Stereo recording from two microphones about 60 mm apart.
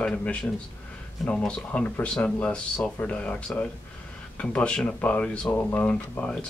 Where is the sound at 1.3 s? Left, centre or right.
Centre.